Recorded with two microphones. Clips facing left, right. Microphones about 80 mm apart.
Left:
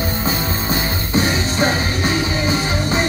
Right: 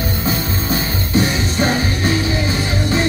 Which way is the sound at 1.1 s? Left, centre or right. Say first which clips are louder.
Right 1 dB; left.